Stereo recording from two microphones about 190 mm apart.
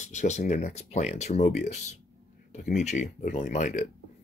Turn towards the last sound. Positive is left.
turn(degrees=40)  # may be behind; listen again after turning